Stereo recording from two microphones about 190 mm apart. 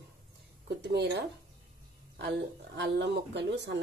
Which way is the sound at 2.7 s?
65° right (ahead or behind).